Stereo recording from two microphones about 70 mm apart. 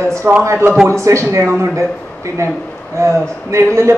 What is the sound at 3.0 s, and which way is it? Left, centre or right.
Speech, right.